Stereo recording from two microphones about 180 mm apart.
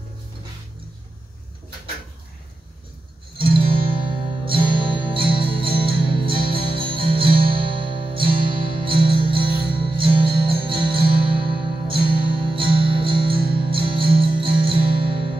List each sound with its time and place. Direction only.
3.3 s music: 30° right (ahead or behind)